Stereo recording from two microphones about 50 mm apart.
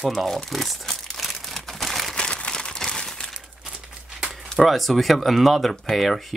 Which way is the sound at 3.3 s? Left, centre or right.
Centre.